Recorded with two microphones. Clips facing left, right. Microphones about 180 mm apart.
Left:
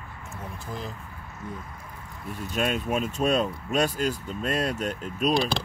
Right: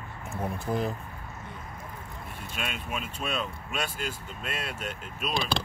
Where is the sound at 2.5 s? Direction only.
40° left (ahead or behind).